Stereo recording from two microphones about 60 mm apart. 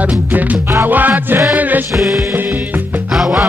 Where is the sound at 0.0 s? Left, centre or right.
Right.